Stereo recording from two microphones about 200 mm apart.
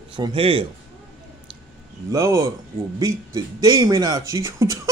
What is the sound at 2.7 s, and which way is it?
Speech, 45° right (ahead or behind).